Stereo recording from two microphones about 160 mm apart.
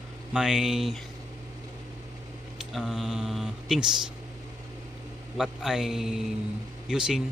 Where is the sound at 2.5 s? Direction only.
Centre (ahead or behind).